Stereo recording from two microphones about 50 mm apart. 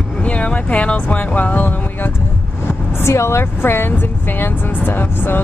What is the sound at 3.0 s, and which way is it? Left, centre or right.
Speech, left.